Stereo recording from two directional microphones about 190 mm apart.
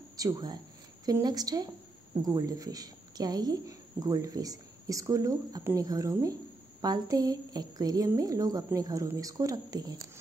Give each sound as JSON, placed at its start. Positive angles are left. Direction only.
{"t": 0.2, "sound": "a woman's voice", "side_deg": -20}